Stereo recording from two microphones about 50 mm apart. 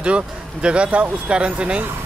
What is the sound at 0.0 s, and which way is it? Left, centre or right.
Speech, right.